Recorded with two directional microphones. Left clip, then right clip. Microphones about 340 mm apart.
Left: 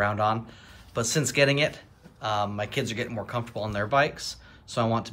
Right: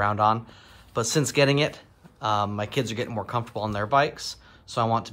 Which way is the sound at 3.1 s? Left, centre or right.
Centre.